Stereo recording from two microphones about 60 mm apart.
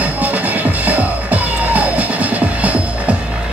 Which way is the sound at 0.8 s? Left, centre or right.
Right.